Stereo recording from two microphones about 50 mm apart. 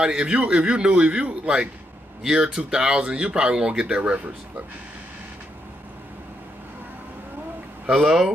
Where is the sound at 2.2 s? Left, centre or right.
Centre; by 4.3 s right.